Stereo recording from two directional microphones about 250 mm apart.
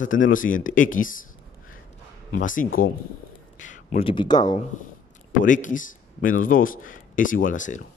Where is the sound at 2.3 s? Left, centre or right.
Left; by 4.6 s centre.